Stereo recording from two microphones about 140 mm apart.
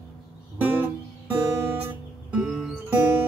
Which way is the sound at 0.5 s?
10° right (ahead or behind).